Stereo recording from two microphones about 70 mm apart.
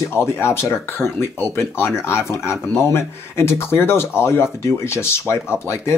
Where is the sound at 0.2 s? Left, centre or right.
Left.